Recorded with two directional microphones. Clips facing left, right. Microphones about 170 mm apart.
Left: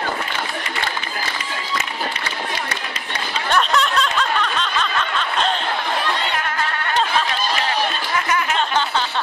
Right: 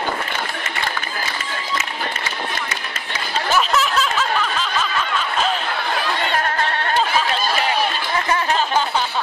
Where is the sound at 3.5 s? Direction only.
5° right (ahead or behind).